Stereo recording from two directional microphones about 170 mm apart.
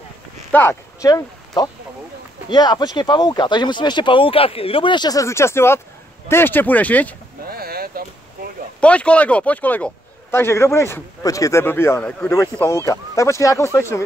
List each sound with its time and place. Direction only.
0.5 s speech: 15° left (ahead or behind)
7.4 s boat: 65° right (ahead or behind)
8.8 s speech: 5° left (ahead or behind)